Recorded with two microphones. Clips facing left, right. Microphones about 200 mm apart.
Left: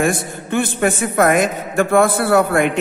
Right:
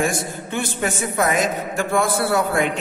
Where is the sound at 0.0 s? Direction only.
55° left (ahead or behind).